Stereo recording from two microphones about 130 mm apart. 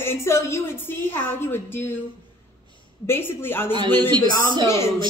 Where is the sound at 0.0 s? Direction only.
20° left (ahead or behind).